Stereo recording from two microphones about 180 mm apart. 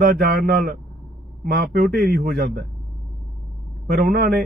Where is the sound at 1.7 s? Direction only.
50° right (ahead or behind).